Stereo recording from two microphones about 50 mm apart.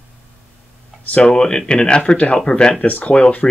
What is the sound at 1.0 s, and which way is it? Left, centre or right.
Speech, left.